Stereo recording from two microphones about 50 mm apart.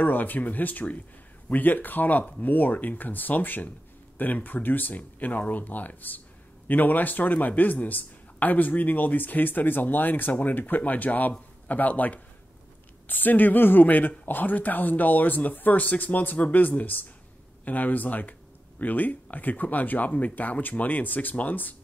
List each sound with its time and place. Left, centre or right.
0.0 s a man's voice: left